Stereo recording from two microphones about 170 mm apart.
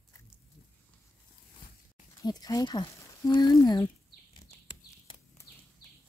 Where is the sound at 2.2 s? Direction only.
25° left (ahead or behind).